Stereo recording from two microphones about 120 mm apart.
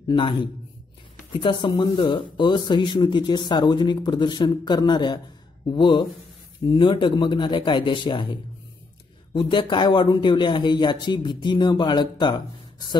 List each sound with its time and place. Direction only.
0.1 s a man's voice: 45° left (ahead or behind)